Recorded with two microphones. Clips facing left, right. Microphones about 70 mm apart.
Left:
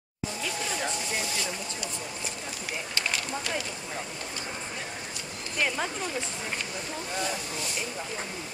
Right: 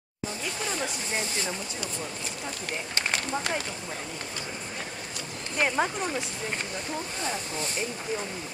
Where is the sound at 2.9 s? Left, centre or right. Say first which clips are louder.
Right 3 dB; right.